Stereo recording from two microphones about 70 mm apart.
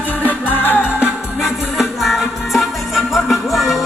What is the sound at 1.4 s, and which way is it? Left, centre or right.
Music, centre.